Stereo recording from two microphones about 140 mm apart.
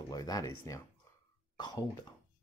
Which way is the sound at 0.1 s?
25° left (ahead or behind).